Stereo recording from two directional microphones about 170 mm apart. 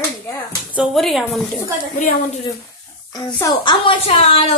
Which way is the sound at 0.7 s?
Centre (ahead or behind).